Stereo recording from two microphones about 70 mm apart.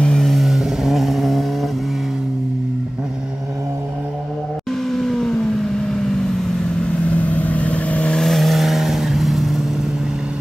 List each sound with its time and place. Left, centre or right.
0.0 s vehicle: centre
4.9 s vehicle: centre
8.2 s vehicle: centre